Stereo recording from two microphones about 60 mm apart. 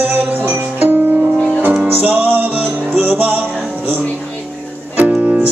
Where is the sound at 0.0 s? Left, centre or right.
Right.